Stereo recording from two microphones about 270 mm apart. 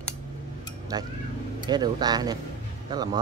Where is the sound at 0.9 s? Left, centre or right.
Centre.